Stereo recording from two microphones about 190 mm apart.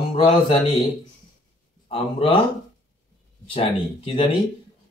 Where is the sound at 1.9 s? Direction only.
30° left (ahead or behind).